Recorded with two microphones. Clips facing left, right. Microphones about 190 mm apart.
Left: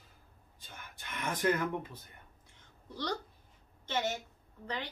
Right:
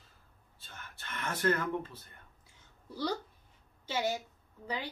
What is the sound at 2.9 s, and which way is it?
A woman's voice, 10° right (ahead or behind).